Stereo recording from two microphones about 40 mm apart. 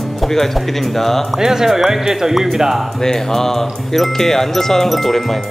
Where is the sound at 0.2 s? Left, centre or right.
Centre.